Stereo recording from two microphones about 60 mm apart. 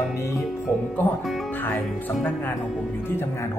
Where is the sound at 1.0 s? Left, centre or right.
Left.